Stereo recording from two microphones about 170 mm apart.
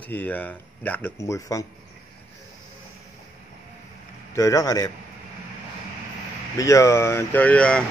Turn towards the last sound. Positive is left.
turn(degrees=5)  # may be behind; listen again after turning